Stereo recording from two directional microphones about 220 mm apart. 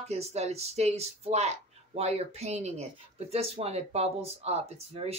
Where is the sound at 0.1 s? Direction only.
30° right (ahead or behind).